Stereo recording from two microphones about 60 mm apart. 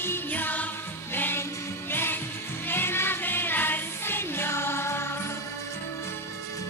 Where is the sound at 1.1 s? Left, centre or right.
Left.